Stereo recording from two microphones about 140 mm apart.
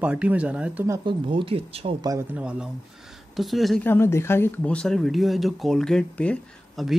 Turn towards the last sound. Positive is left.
turn(degrees=5)  # may be behind; listen again after turning